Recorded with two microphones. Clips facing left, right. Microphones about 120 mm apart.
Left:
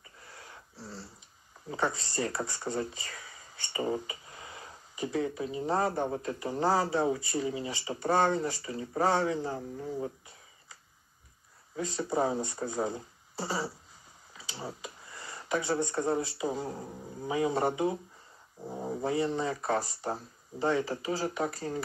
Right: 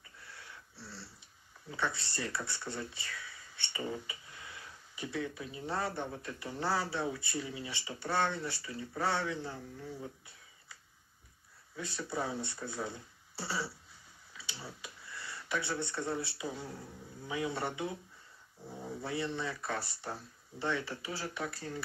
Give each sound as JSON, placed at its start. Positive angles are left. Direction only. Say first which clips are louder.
{"t": 0.2, "sound": "dog", "louder": "left 3 dB", "side_deg": 40}
{"t": 1.7, "sound": "speech", "louder": "left 5 dB", "side_deg": 40}
{"t": 11.7, "sound": "speech", "louder": "left 7 dB", "side_deg": 40}